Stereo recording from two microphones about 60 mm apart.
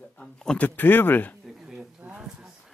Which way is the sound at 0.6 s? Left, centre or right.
Left.